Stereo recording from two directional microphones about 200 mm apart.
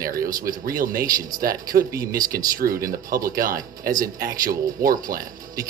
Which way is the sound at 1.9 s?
15° right (ahead or behind).